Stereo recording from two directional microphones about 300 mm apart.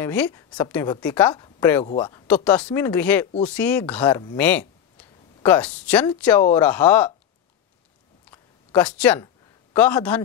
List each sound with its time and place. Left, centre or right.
0.0 s a woman's voice: centre
2.2 s a woman's voice: centre
8.3 s a sound: centre